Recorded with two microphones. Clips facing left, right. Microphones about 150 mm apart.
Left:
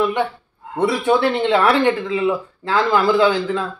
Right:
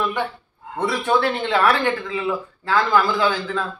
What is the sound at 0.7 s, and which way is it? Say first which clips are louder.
Speech: left 4 dB; 20° left (ahead or behind).